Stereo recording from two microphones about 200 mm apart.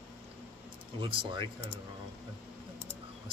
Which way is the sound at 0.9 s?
25° right (ahead or behind).